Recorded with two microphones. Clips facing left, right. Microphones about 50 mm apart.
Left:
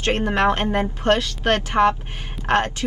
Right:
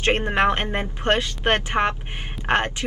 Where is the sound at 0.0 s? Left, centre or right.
Right.